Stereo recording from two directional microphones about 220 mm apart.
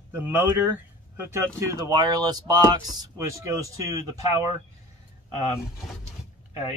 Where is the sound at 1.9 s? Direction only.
20° right (ahead or behind).